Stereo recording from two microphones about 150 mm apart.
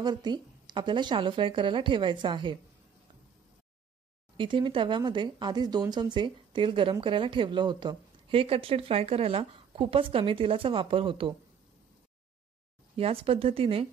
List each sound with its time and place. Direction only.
0.0 s speech: 30° right (ahead or behind)
4.4 s speech: 35° right (ahead or behind)
12.9 s speech: 40° right (ahead or behind)